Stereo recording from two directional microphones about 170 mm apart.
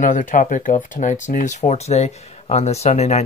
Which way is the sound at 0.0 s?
50° left (ahead or behind).